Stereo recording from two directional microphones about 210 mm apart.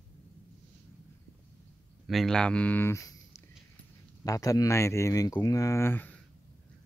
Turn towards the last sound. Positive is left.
turn(degrees=10)  # may be behind; listen again after turning